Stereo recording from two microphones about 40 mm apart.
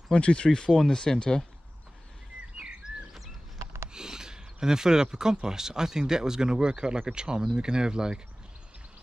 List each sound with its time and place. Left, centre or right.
0.1 s speech: left
0.5 s speech: centre
3.9 s speech: centre